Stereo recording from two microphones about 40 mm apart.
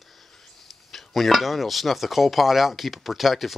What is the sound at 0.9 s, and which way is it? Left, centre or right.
Speech, centre.